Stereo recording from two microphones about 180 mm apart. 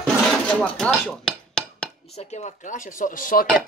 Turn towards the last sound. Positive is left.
turn(degrees=50)  # may be behind; listen again after turning